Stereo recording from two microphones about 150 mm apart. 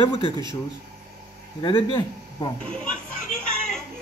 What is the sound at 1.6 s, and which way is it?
Speech, 30° left (ahead or behind).